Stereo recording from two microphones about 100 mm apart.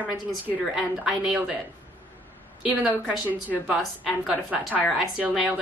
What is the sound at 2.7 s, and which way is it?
A woman's voice, 10° right (ahead or behind).